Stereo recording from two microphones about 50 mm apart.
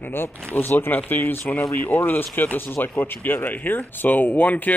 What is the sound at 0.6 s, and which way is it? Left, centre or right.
Speech, left.